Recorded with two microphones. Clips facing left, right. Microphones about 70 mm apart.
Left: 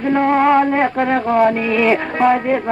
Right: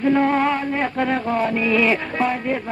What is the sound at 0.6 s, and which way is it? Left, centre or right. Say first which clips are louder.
Music: left 9 dB; left.